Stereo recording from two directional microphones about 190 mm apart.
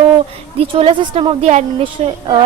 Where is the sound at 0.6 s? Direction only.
30° right (ahead or behind).